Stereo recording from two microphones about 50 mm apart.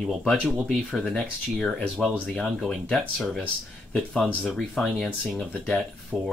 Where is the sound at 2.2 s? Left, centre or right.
Centre.